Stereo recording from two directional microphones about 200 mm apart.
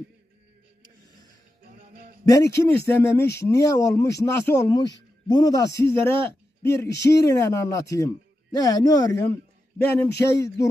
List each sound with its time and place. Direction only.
2.2 s a man's voice: 15° left (ahead or behind)